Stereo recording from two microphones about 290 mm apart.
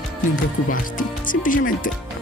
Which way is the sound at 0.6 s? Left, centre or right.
Left.